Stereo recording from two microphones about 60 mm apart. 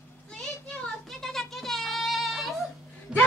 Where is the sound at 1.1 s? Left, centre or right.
Centre.